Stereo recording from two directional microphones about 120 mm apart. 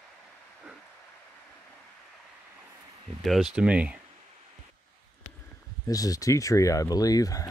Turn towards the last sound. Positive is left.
turn(degrees=30)  # may be behind; listen again after turning